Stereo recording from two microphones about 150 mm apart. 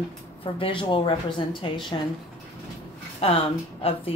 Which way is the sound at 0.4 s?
35° left (ahead or behind).